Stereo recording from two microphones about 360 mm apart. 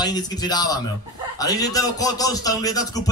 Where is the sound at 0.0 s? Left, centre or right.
Centre.